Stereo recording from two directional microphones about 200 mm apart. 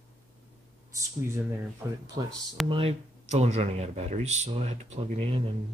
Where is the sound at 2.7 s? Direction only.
30° right (ahead or behind).